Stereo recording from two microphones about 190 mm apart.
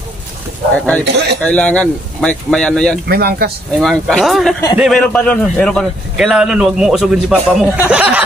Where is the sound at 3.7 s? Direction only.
Centre (ahead or behind).